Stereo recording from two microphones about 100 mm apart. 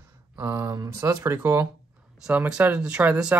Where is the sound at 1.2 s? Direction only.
25° right (ahead or behind).